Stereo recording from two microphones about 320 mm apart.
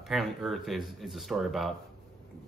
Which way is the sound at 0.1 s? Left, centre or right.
Centre.